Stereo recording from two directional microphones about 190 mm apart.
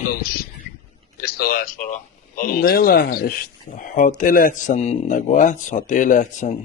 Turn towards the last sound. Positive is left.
turn(degrees=40)  # may be behind; listen again after turning